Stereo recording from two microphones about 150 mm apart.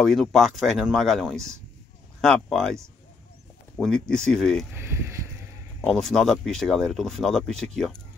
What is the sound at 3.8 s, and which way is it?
Speech, 5° left (ahead or behind).